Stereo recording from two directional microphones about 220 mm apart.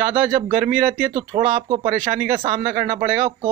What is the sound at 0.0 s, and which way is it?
Speech, 40° right (ahead or behind).